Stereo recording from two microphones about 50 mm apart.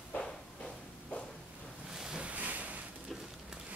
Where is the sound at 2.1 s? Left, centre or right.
Right.